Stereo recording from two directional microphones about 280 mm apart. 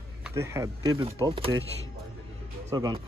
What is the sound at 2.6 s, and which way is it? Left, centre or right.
Speech, centre.